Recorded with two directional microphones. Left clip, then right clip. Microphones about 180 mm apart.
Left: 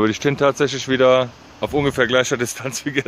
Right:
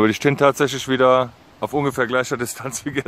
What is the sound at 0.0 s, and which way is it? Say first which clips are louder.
Speech: right 1 dB; 45° right (ahead or behind).